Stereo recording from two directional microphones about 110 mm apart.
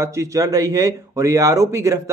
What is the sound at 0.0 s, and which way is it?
A man's voice, 25° right (ahead or behind).